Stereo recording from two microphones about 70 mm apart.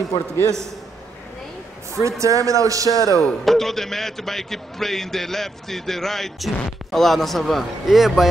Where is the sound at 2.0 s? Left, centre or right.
Right.